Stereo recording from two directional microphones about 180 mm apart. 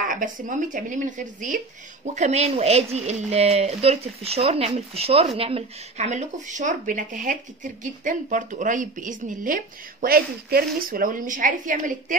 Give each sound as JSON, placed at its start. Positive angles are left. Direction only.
{"t": 0.1, "sound": "speech", "side_deg": -45}